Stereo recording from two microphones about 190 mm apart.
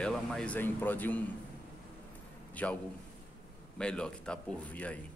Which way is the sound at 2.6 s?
5° left (ahead or behind).